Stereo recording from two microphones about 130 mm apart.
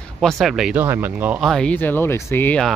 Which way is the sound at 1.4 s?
5° left (ahead or behind).